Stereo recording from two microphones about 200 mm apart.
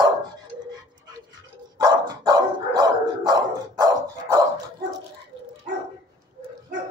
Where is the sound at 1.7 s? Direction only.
20° right (ahead or behind).